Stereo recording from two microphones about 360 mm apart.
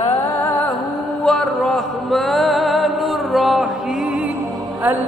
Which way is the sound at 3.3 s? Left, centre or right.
Centre.